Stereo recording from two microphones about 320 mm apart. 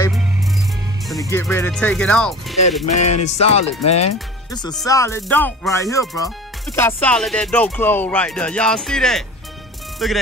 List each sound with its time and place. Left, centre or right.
1.3 s music: centre
2.9 s music: left
3.3 s music: centre
3.8 s speech: centre
4.7 s music: centre